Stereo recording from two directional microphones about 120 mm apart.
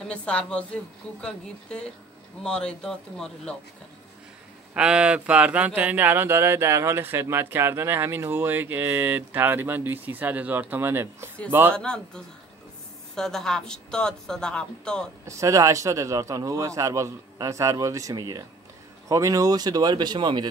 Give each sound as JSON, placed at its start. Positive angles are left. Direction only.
{"t": 0.1, "sound": "speech", "side_deg": 10}
{"t": 4.7, "sound": "speech", "side_deg": -10}
{"t": 11.7, "sound": "speech", "side_deg": 5}
{"t": 15.2, "sound": "a man's voice", "side_deg": -25}